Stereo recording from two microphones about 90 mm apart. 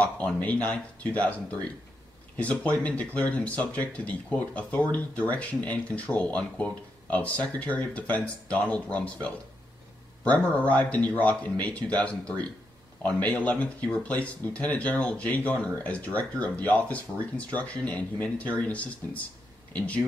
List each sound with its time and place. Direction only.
0.0 s speech: 15° left (ahead or behind)
10.7 s speech: 15° left (ahead or behind)